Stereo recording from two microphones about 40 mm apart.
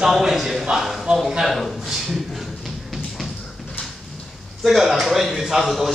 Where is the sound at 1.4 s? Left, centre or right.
Centre.